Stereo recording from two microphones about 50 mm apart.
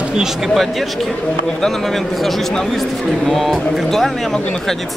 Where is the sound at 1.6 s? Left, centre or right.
Centre.